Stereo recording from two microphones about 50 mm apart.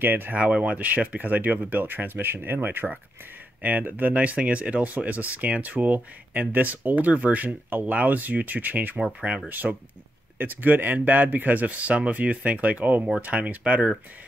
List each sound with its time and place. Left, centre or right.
0.0 s speech: right
0.5 s speech: right
9.0 s speech: right
9.5 s speech: right